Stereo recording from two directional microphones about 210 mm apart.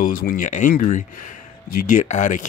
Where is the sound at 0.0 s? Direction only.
40° left (ahead or behind).